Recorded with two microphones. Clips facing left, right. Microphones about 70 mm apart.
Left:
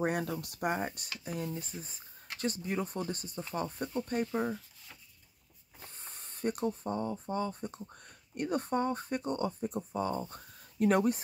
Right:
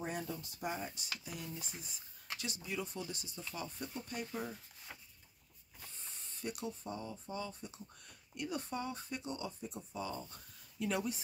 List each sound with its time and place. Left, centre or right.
0.0 s speech: left
5.8 s speech: left